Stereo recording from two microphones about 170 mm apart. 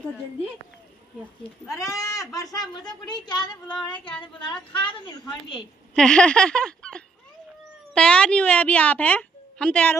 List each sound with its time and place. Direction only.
1.7 s speech: 20° left (ahead or behind)
5.9 s a sound: 5° left (ahead or behind)
7.9 s a woman's voice: 5° left (ahead or behind)